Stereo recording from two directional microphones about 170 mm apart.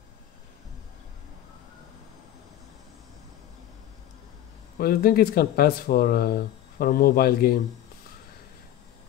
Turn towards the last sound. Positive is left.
turn(degrees=65)  # may be behind; listen again after turning